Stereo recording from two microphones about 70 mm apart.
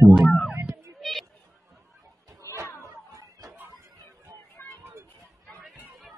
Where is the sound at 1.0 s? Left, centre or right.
Centre.